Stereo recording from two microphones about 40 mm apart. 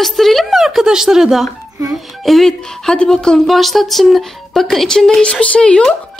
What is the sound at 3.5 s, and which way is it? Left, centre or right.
Speech, centre.